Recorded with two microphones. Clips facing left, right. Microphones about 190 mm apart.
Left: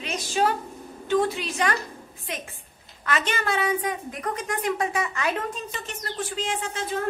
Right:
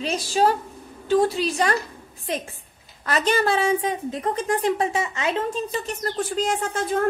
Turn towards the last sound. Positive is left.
turn(degrees=-50)  # may be behind; listen again after turning